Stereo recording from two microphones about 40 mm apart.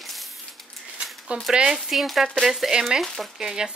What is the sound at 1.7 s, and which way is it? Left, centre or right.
Speech, centre.